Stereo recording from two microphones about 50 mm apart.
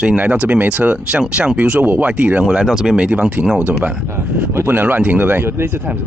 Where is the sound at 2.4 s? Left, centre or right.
Centre.